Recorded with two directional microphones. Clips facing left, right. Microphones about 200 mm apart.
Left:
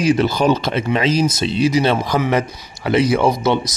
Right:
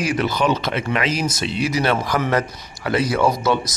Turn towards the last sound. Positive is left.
turn(degrees=20)  # may be behind; listen again after turning